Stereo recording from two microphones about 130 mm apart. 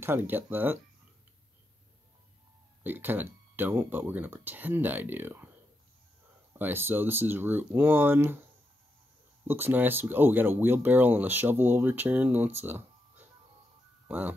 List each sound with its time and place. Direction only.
0.0 s speech: 15° right (ahead or behind)
2.8 s speech: 15° right (ahead or behind)
6.6 s speech: 15° right (ahead or behind)
9.5 s speech: 15° right (ahead or behind)